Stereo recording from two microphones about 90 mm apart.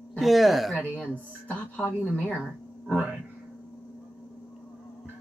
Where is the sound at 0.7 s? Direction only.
15° left (ahead or behind).